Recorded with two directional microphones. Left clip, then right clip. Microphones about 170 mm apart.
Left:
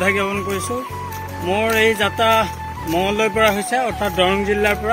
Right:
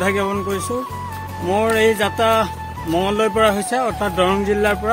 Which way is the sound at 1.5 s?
30° right (ahead or behind).